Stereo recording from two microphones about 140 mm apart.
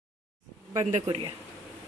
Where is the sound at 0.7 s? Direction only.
50° right (ahead or behind).